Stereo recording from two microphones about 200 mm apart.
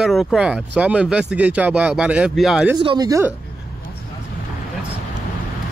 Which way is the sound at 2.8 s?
20° right (ahead or behind).